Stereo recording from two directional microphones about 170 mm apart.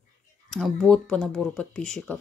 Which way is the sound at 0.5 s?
5° left (ahead or behind).